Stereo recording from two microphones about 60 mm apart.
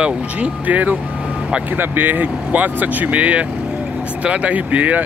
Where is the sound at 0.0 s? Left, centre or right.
Right.